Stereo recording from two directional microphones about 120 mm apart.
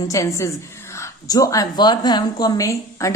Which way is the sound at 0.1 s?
25° left (ahead or behind).